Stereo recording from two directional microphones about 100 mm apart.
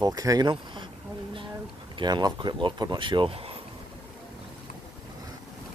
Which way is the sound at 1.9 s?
45° right (ahead or behind).